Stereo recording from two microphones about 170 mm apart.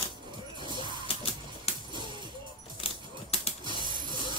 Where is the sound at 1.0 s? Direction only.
35° left (ahead or behind).